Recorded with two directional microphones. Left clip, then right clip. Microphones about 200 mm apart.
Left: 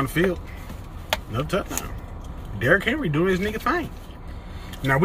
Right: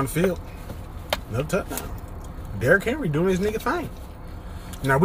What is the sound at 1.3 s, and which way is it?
Speech, 20° right (ahead or behind).